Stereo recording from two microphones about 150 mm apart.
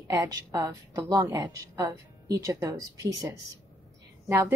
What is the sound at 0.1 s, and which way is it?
A woman's voice, 20° right (ahead or behind).